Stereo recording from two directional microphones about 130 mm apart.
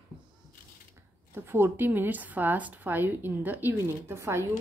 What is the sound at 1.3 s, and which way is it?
Speech, 15° right (ahead or behind).